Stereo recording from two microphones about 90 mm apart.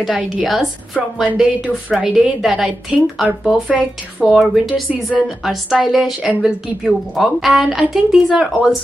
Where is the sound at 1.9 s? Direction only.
5° right (ahead or behind).